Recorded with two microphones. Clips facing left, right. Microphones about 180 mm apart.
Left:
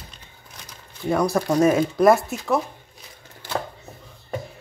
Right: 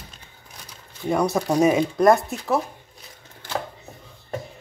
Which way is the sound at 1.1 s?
Centre (ahead or behind).